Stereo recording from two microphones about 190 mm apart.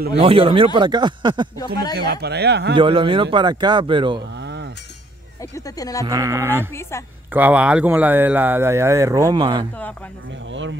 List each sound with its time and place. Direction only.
0.1 s speech: 30° right (ahead or behind)
2.0 s speech: 55° right (ahead or behind)
2.7 s speech: 25° right (ahead or behind)
5.8 s speech: 20° left (ahead or behind)
6.0 s speech: 15° right (ahead or behind)
10.5 s speech: 80° right